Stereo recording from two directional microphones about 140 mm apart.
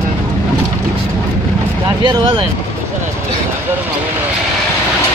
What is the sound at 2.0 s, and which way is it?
Speech, 35° right (ahead or behind).